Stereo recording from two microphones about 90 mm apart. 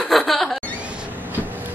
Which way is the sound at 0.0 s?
Centre (ahead or behind).